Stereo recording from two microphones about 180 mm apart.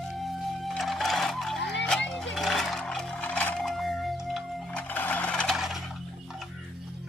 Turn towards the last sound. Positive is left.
turn(degrees=0)  # may be behind; listen again after turning